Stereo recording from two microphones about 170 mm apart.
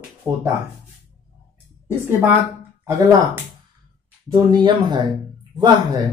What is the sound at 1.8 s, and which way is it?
Speech, 10° right (ahead or behind).